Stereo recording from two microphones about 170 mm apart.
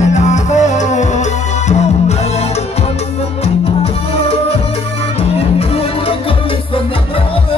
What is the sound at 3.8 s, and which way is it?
Music, 35° left (ahead or behind).